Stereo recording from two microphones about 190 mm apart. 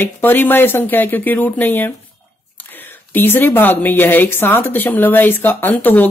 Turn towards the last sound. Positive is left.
turn(degrees=10)  # may be behind; listen again after turning